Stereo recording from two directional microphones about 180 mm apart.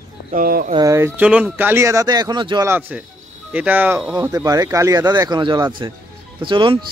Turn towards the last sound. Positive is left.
turn(degrees=-25)  # may be behind; listen again after turning